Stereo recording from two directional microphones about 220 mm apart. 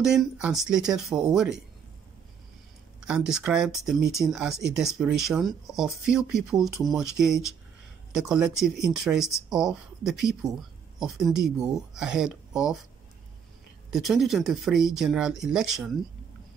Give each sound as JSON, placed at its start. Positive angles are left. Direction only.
{"t": 0.0, "sound": "speech", "side_deg": 0}
{"t": 3.1, "sound": "speech", "side_deg": -5}
{"t": 13.9, "sound": "speech", "side_deg": 0}